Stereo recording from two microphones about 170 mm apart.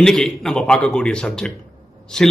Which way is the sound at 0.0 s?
5° left (ahead or behind).